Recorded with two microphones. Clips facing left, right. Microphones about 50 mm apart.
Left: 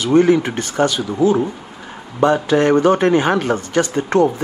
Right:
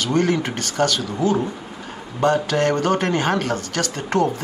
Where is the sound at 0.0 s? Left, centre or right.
Centre.